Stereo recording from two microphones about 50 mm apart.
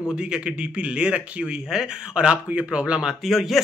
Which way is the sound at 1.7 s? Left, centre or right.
Centre.